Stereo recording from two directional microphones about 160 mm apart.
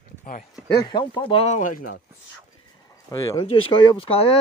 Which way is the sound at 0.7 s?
25° left (ahead or behind).